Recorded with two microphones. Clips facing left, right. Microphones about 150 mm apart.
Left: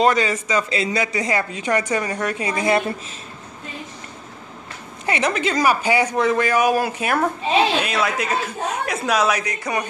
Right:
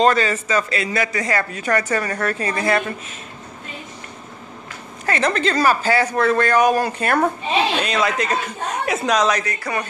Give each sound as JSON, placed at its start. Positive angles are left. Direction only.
{"t": 0.0, "sound": "a man's voice", "side_deg": 15}
{"t": 5.0, "sound": "a man's voice", "side_deg": 15}